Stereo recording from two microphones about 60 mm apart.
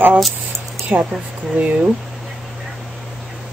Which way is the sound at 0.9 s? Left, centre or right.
Right.